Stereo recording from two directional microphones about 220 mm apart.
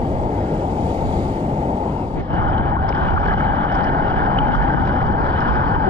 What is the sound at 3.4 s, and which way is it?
Boat, 10° left (ahead or behind).